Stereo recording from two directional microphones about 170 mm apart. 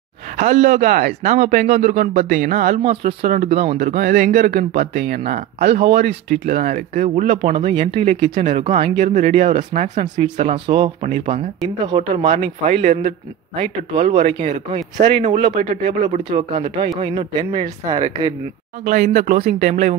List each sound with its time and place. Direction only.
0.4 s speech: 45° right (ahead or behind)
2.8 s speech: 35° right (ahead or behind)
3.7 s speech: 55° right (ahead or behind)
4.5 s speech: 55° right (ahead or behind)
5.2 s speech: 40° right (ahead or behind)
9.0 s speech: 45° right (ahead or behind)
12.6 s speech: 45° right (ahead or behind)
16.3 s speech: 35° right (ahead or behind)
18.9 s speech: 50° right (ahead or behind)